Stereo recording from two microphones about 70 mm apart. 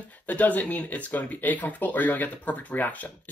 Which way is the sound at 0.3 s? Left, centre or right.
Left.